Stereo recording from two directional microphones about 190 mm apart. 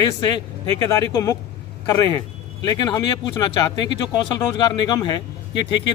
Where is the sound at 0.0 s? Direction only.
25° left (ahead or behind).